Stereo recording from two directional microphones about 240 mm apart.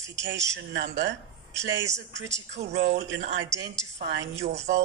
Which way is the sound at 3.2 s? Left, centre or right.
Right.